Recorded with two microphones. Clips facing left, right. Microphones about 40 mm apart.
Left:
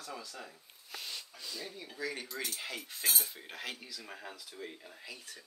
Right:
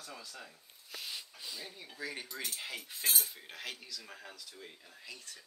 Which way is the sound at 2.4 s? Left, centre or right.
Centre.